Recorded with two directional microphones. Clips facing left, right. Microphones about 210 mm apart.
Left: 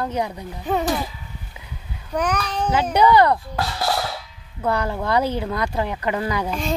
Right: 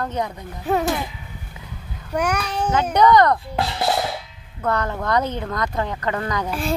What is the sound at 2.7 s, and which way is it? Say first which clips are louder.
Speech: right 1 dB; 10° left (ahead or behind).